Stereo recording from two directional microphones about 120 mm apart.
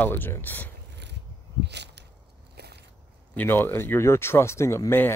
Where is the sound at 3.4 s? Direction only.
15° left (ahead or behind).